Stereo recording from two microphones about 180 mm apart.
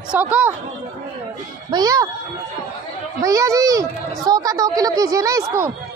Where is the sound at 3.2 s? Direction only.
20° right (ahead or behind).